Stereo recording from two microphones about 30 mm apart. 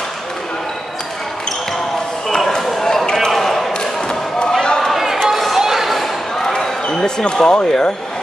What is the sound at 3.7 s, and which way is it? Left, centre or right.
Basketball bounce, left.